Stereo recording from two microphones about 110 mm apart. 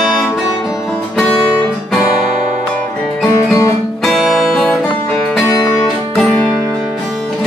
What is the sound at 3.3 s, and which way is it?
Music, 30° left (ahead or behind).